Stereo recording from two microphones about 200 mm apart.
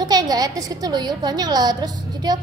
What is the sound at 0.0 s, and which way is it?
A woman's voice, 20° right (ahead or behind).